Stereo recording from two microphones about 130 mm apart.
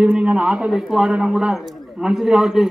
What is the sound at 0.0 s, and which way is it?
Speech, 10° right (ahead or behind).